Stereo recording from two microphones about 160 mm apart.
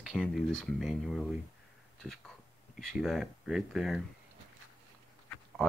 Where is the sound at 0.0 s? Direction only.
Centre (ahead or behind).